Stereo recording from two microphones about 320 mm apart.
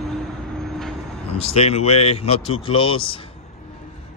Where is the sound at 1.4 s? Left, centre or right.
Centre.